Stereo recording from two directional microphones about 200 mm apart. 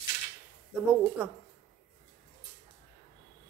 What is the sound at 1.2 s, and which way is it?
Speech, 5° right (ahead or behind).